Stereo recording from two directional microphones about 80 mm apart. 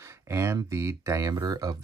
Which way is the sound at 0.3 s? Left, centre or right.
Right.